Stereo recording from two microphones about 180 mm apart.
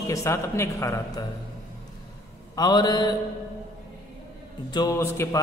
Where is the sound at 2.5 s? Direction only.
25° left (ahead or behind).